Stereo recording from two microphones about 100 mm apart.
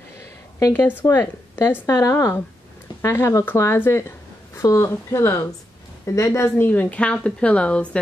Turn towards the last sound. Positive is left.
turn(degrees=10)  # may be behind; listen again after turning